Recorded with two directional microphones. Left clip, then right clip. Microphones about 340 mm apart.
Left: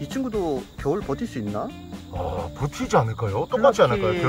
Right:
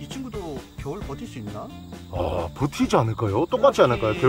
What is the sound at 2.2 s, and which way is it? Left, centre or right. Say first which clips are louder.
Speech: right 3 dB; right.